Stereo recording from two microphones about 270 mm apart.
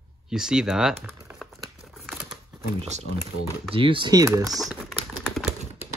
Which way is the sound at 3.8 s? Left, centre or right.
Centre.